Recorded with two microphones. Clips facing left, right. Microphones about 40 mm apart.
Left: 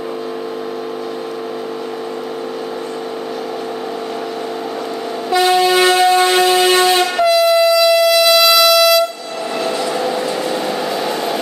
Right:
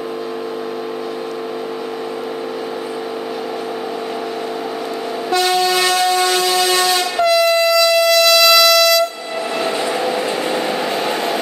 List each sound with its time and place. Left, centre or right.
5.3 s train: centre
7.2 s train: centre
9.6 s train: centre